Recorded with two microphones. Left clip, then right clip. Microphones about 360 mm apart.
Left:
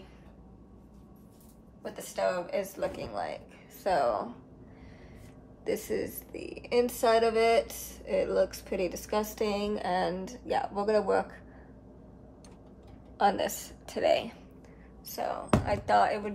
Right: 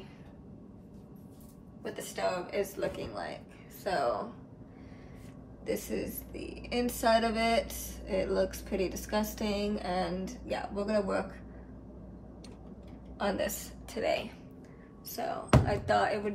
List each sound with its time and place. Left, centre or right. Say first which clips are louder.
1.8 s a woman's voice: left 3 dB; centre
5.7 s a woman's voice: left 3 dB; centre
13.2 s a woman's voice: left 6 dB; left